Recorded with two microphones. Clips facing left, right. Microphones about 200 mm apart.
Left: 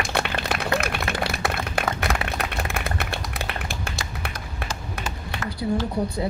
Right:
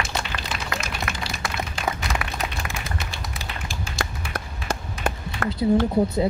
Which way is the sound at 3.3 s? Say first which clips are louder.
Left 3 dB; 60° left (ahead or behind).